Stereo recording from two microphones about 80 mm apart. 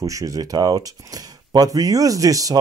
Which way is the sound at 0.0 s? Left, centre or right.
Right.